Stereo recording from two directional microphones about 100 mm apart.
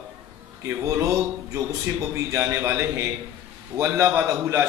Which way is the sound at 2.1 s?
25° right (ahead or behind).